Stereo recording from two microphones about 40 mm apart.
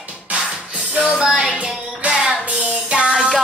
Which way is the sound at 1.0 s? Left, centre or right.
Right.